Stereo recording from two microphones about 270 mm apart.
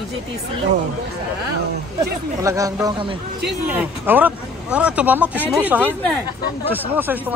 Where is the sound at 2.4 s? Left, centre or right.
Centre.